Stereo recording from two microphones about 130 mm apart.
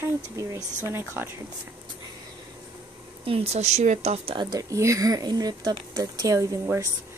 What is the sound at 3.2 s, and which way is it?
Speech, 50° right (ahead or behind).